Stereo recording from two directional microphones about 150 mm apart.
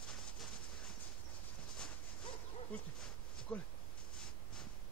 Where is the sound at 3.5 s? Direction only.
10° left (ahead or behind).